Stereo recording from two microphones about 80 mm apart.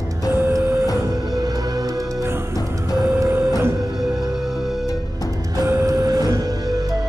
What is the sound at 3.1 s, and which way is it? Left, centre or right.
Printer, right.